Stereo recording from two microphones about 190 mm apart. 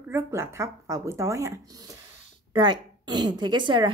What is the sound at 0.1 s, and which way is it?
Speech, 15° right (ahead or behind).